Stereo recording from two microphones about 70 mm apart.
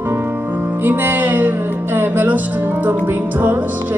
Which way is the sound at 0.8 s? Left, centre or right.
Right.